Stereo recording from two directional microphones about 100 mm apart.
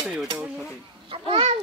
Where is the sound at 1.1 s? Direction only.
60° right (ahead or behind).